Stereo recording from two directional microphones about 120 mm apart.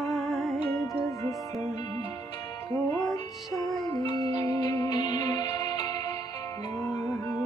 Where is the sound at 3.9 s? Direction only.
35° left (ahead or behind).